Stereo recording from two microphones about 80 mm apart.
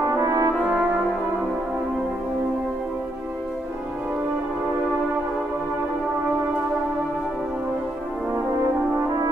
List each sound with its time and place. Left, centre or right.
0.0 s brass instrument: right
0.7 s brass instrument: right